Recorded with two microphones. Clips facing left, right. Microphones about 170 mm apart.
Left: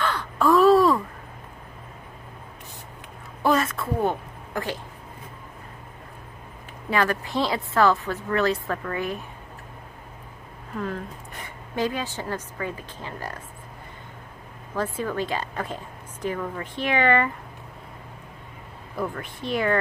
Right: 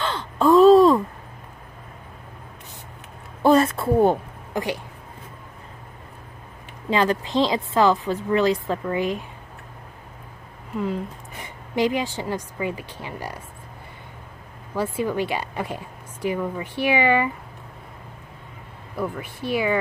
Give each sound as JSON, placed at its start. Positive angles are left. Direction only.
{"t": 0.0, "sound": "a sound", "side_deg": -25}
{"t": 3.4, "sound": "a sound", "side_deg": -30}
{"t": 4.6, "sound": "a woman's voice", "side_deg": -20}
{"t": 6.9, "sound": "a woman's voice", "side_deg": -20}
{"t": 10.8, "sound": "a woman's voice", "side_deg": -15}
{"t": 14.8, "sound": "a woman's voice", "side_deg": -10}
{"t": 18.9, "sound": "a woman's voice", "side_deg": -5}